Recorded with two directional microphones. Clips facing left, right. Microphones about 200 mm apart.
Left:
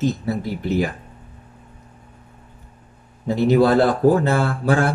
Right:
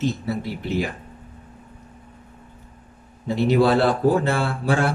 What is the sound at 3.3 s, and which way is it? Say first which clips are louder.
A man's voice: left 3 dB; 45° left (ahead or behind).